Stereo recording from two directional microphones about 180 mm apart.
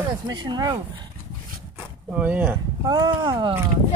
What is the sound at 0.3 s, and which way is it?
Speech, 25° right (ahead or behind).